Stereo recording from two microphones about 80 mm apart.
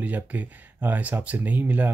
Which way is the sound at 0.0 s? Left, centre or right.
Right.